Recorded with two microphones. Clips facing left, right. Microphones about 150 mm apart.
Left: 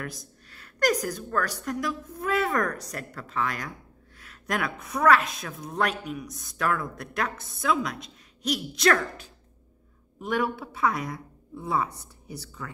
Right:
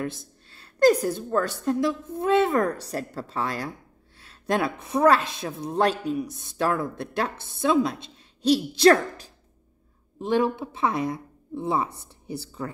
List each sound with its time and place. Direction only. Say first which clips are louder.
0.0 s a woman's voice: right 6 dB; 25° right (ahead or behind)